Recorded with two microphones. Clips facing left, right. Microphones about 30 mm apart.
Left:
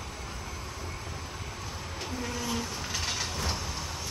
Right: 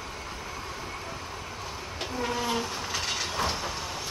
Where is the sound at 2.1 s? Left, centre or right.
Right.